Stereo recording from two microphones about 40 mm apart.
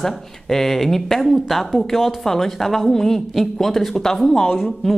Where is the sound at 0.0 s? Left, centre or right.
Centre.